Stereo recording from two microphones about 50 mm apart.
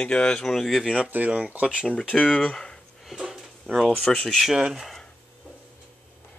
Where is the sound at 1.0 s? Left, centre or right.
Right.